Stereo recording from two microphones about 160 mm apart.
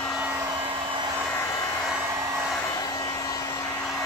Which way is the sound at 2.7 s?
25° left (ahead or behind).